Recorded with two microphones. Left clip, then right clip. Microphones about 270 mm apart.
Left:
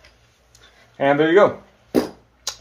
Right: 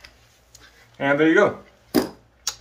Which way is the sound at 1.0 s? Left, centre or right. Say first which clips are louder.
Left 3 dB; left.